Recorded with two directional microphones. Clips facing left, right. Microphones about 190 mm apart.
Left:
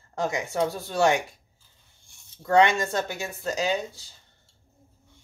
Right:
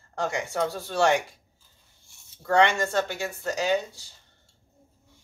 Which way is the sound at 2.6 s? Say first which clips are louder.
Even; 20° left (ahead or behind).